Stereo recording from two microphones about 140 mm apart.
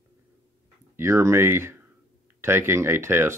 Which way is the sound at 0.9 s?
15° right (ahead or behind).